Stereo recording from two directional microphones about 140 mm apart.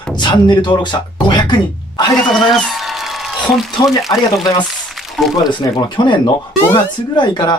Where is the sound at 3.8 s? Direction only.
30° left (ahead or behind).